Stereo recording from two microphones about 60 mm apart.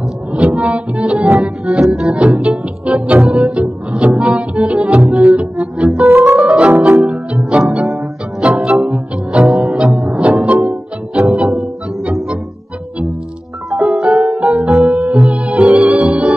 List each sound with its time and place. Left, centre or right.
0.3 s music: right
2.1 s music: centre
3.9 s double bass: centre
5.0 s music: centre
6.0 s music: right
6.4 s music: centre
8.4 s music: centre
9.8 s music: centre
10.1 s music: centre
13.7 s music: centre
14.0 s music: centre
15.0 s music: right